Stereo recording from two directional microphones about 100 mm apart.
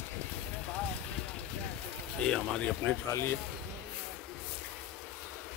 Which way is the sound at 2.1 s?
10° left (ahead or behind).